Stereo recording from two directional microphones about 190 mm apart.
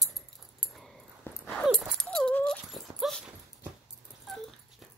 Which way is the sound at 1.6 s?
5° right (ahead or behind).